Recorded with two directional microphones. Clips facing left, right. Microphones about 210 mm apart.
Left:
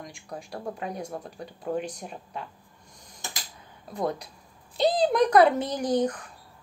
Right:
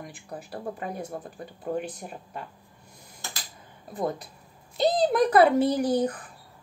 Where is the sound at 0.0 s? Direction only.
5° right (ahead or behind).